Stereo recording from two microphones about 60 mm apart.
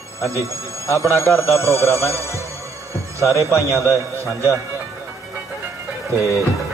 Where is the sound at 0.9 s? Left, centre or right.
Left.